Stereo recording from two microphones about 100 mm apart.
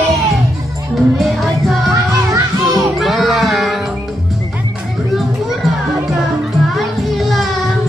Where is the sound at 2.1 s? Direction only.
35° right (ahead or behind).